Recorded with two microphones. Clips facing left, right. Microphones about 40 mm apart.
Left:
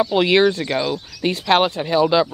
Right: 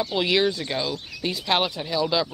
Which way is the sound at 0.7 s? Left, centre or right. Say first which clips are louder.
Left 6 dB; left.